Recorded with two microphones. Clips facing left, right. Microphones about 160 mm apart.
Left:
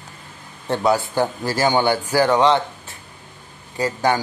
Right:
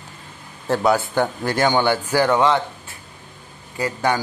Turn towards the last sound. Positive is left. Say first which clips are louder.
# left 2 dB
turn(degrees=30)  # may be behind; listen again after turning